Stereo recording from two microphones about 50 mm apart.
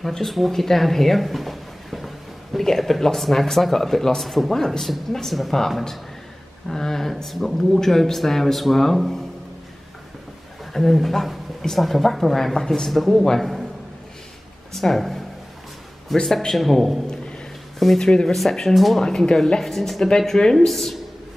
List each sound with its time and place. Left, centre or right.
0.0 s speech: centre
10.7 s speech: centre
14.7 s speech: centre
19.0 s a woman's voice: centre